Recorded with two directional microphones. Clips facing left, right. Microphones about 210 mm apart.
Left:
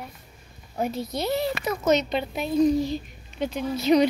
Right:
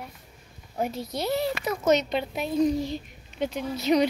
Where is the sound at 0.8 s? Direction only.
10° right (ahead or behind).